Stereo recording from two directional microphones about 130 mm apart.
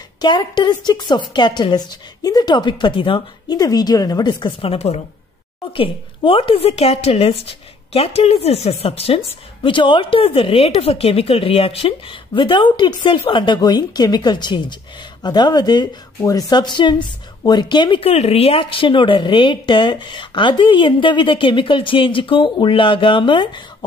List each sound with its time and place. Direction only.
0.2 s speech: 35° left (ahead or behind)
18.1 s speech: 50° left (ahead or behind)